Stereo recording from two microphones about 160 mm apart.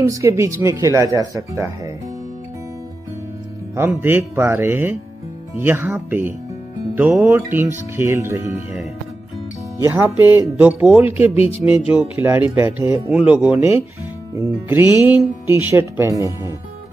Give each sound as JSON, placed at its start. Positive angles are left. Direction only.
{"t": 0.0, "sound": "speech", "side_deg": -20}
{"t": 3.7, "sound": "speech", "side_deg": -15}
{"t": 9.8, "sound": "speech", "side_deg": -15}
{"t": 15.0, "sound": "speech", "side_deg": -10}